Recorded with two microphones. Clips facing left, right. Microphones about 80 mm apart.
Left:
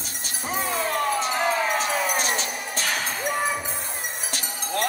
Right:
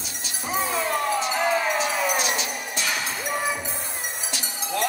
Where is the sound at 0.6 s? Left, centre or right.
Left.